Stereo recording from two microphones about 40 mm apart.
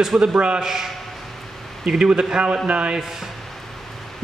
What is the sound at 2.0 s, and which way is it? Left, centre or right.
Speech, right.